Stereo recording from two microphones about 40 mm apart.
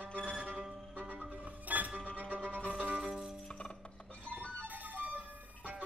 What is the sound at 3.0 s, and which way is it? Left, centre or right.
Music, centre.